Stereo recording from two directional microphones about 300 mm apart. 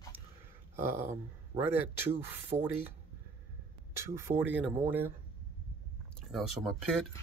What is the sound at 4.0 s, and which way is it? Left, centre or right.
Speech, centre.